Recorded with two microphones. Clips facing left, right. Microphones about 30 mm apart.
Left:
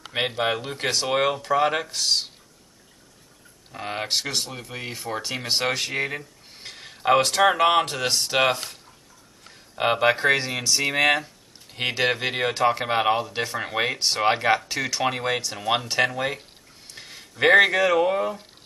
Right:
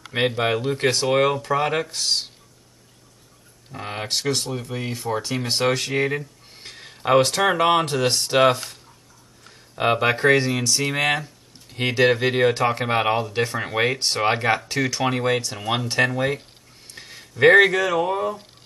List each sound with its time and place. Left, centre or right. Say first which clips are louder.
0.1 s speech: right 3 dB; centre
3.7 s speech: left 1 dB; centre
9.8 s speech: right 1 dB; centre